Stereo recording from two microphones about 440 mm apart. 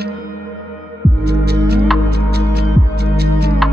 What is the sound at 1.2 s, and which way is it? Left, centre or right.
Music, right.